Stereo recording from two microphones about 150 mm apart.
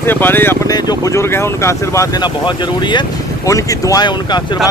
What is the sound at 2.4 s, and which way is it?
Speech, 30° left (ahead or behind).